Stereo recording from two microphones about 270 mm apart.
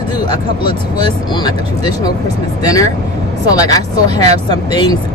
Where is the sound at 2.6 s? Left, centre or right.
Centre.